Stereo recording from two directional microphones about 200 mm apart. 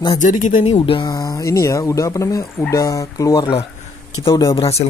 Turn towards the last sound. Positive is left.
turn(degrees=20)  # may be behind; listen again after turning